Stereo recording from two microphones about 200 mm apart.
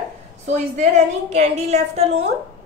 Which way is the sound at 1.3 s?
35° right (ahead or behind).